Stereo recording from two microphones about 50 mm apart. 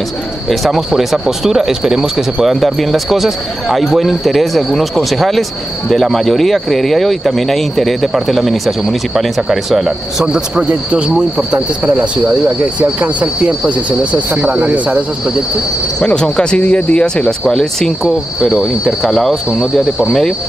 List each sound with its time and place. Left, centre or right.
0.5 s speech: centre
10.2 s speech: centre
16.1 s speech: centre
18.0 s speech: centre